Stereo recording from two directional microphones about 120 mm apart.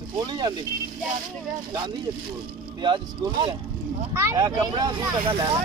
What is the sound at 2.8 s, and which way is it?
Speech, 40° right (ahead or behind).